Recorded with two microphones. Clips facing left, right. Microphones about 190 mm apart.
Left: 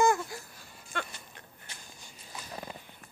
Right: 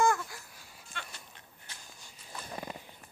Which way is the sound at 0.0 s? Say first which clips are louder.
Left 2 dB; 20° left (ahead or behind).